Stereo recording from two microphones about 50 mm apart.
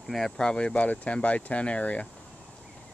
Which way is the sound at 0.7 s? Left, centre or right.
Left.